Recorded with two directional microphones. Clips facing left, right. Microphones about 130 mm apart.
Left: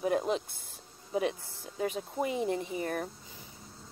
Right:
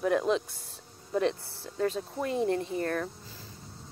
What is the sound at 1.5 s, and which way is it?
Speech, 15° left (ahead or behind).